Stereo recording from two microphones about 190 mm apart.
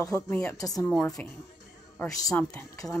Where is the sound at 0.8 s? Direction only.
5° left (ahead or behind).